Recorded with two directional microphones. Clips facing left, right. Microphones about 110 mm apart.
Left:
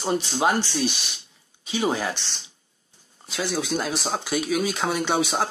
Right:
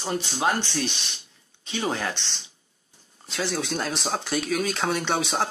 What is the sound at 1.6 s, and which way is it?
Speech, 10° left (ahead or behind).